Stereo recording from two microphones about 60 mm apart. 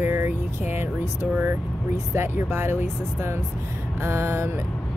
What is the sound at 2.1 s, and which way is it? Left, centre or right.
Speech, right.